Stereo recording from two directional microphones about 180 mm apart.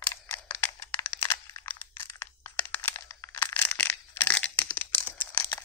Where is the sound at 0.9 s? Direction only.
25° left (ahead or behind).